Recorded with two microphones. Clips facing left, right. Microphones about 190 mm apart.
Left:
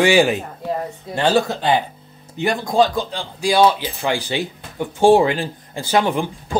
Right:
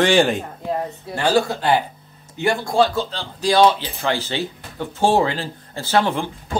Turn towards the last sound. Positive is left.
turn(degrees=15)  # may be behind; listen again after turning